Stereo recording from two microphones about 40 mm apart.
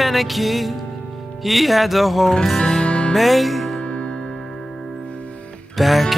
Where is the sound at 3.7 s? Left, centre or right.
Left.